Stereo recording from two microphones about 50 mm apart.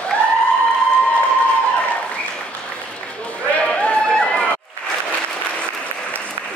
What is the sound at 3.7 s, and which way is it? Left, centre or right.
Run, left.